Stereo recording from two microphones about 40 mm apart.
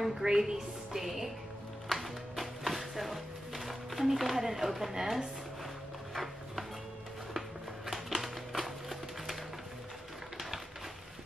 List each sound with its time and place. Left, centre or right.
0.0 s a woman's voice: centre
0.9 s speech: centre
1.9 s music: centre
7.3 s a sound: centre